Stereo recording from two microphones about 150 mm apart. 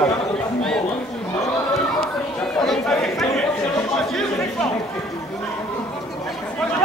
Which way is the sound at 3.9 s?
5° left (ahead or behind).